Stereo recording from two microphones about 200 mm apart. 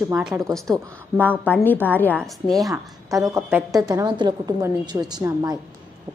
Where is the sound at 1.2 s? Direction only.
10° left (ahead or behind).